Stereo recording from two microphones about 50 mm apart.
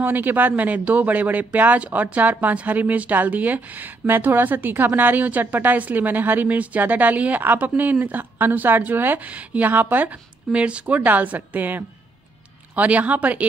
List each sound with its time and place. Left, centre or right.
0.0 s a woman's voice: right
4.1 s a woman's voice: right
9.3 s a woman's voice: right